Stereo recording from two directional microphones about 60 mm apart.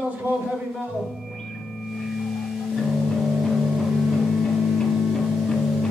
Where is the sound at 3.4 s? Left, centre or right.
Centre.